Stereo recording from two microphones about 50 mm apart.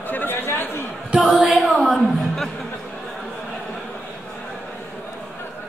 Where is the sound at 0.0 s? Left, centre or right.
Left.